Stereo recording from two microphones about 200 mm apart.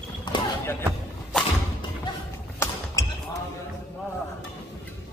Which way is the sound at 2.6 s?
15° left (ahead or behind).